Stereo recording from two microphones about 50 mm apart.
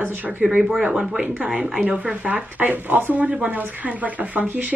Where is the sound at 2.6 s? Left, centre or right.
Right.